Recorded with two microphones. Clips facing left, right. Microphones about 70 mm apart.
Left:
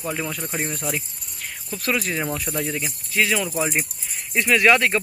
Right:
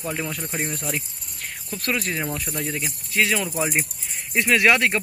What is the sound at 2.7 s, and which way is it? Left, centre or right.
Speech, centre.